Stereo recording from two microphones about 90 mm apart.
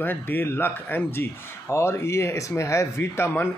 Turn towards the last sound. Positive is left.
turn(degrees=25)  # may be behind; listen again after turning